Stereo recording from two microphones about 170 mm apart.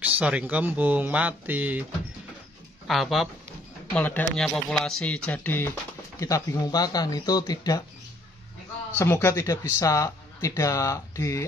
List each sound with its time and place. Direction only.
0.0 s speech: 10° right (ahead or behind)
2.9 s speech: centre (ahead or behind)
3.9 s speech: 10° left (ahead or behind)
8.9 s speech: 15° left (ahead or behind)